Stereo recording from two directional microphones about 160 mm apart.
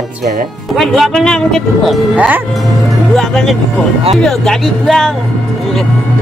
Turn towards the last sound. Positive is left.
turn(degrees=0)  # may be behind; listen again after turning